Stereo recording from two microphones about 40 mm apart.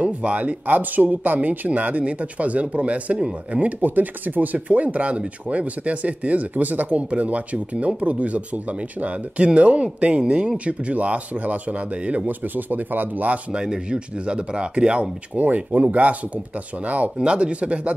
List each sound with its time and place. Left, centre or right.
0.0 s speech: right
0.7 s speech: right
1.7 s speech: right
3.8 s speech: right
12.3 s speech: right
13.5 s speech: right
15.3 s speech: right
17.2 s speech: right